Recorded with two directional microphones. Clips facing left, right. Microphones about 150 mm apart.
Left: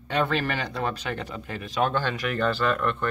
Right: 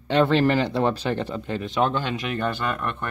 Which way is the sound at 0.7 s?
30° right (ahead or behind).